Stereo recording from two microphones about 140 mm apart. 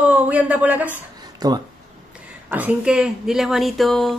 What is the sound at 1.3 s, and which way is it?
Speech, 30° right (ahead or behind).